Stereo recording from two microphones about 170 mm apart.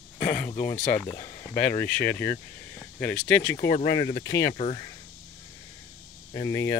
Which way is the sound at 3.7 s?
25° left (ahead or behind).